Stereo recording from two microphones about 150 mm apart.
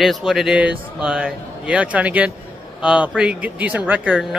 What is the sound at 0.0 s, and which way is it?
Speech, centre (ahead or behind).